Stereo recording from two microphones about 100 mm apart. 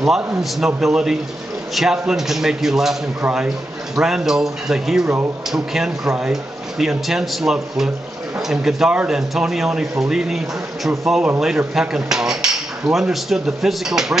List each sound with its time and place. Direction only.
0.0 s speech: 5° right (ahead or behind)
5.0 s speech: 25° right (ahead or behind)
5.5 s speech: 5° right (ahead or behind)